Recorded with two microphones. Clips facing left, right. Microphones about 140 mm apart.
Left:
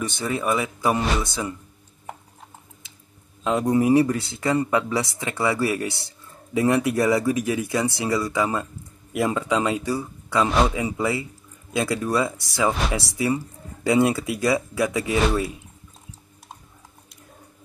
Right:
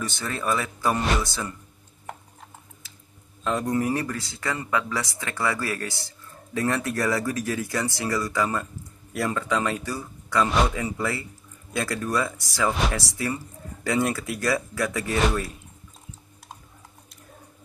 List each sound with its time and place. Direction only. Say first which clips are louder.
0.2 s speech: left 3 dB; 15° left (ahead or behind)
1.2 s speech: left 3 dB; 20° left (ahead or behind)
3.4 s speech: left 5 dB; 20° left (ahead or behind)
15.1 s speech: left 2 dB; 5° left (ahead or behind)